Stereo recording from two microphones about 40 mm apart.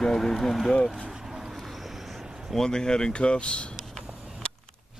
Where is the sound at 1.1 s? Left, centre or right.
Centre.